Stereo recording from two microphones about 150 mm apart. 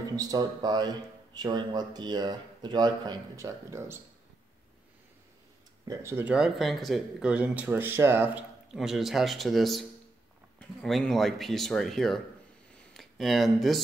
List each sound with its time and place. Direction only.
0.1 s speech: 25° right (ahead or behind)
5.9 s speech: 15° right (ahead or behind)
8.7 s speech: centre (ahead or behind)
12.7 s a sound: centre (ahead or behind)